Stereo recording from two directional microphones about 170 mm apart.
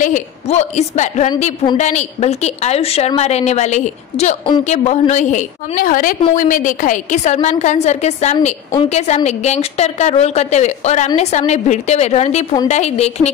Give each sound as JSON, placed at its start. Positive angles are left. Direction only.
{"t": 0.0, "sound": "a woman's voice", "side_deg": 45}